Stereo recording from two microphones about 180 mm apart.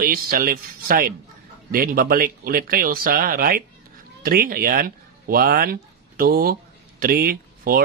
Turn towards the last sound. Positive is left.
turn(degrees=-55)  # may be behind; listen again after turning